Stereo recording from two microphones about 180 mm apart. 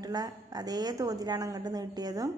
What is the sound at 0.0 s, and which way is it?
A woman's voice, 20° right (ahead or behind).